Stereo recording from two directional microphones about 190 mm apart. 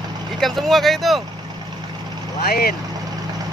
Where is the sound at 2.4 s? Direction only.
55° left (ahead or behind).